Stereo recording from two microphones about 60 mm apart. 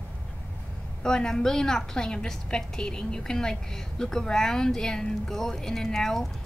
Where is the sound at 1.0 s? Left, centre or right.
Centre.